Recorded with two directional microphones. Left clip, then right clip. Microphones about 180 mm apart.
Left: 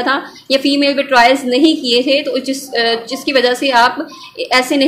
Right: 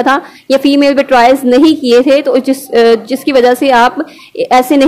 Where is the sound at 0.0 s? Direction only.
45° right (ahead or behind).